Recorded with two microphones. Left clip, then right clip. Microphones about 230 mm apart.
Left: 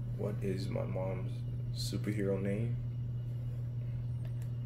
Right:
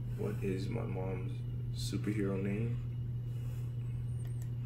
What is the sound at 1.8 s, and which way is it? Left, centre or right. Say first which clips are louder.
Speech: even; centre.